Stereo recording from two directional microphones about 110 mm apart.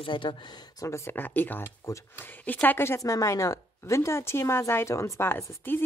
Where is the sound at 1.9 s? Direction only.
30° left (ahead or behind).